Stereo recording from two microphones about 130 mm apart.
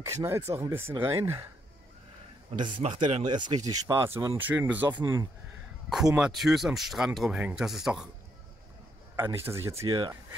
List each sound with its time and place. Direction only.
0.0 s speech: 20° right (ahead or behind)
3.0 s speech: 65° right (ahead or behind)
3.3 s speech: 35° right (ahead or behind); by 5.3 s 20° right (ahead or behind)
5.9 s speech: 5° right (ahead or behind)
9.1 s speech: 20° right (ahead or behind)
9.8 s speech: 40° right (ahead or behind)